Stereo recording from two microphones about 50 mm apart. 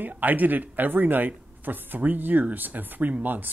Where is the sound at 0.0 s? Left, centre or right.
Right.